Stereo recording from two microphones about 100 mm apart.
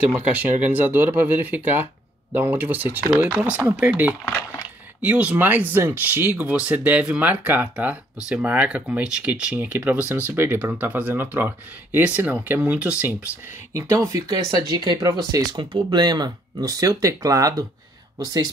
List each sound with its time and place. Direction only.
0.3 s speech: 15° right (ahead or behind)
13.7 s speech: 30° right (ahead or behind)